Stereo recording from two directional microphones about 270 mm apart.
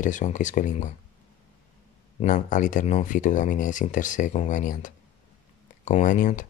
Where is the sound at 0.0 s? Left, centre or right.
Left.